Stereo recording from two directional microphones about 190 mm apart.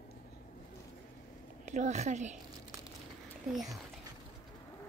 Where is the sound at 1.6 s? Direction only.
40° right (ahead or behind).